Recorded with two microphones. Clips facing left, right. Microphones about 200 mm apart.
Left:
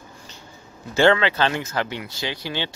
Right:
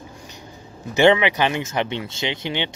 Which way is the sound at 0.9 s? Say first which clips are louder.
Right 2 dB; 20° right (ahead or behind).